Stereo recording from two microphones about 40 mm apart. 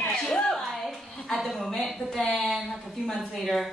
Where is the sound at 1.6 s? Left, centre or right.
Centre.